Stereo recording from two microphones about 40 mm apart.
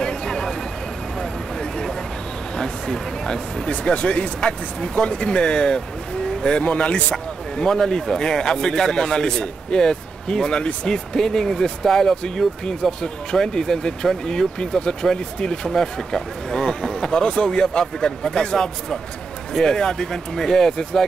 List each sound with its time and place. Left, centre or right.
0.0 s vehicle: centre
2.5 s speech: centre
3.8 s speech: left
4.4 s speech: centre
7.6 s speech: centre
17.1 s speech: left